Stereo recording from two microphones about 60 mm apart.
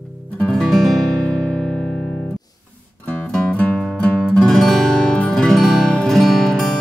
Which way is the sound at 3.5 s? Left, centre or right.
Left.